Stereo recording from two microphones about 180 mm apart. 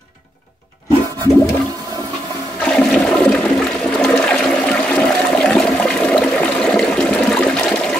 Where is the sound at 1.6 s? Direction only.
20° right (ahead or behind).